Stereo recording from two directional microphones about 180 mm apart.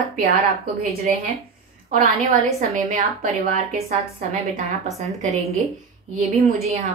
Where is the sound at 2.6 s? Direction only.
45° right (ahead or behind).